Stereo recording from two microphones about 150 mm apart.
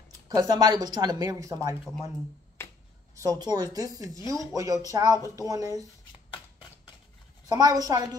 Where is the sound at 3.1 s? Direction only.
25° right (ahead or behind).